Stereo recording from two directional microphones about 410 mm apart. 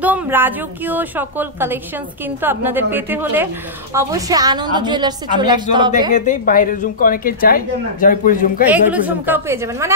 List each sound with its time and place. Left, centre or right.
0.0 s a woman's voice: centre
6.1 s a woman's voice: centre
8.6 s a woman's voice: centre